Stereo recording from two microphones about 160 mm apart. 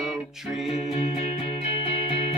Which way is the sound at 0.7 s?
40° left (ahead or behind).